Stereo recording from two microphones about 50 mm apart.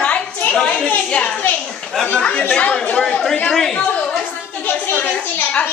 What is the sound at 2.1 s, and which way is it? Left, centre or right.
Chatter, left.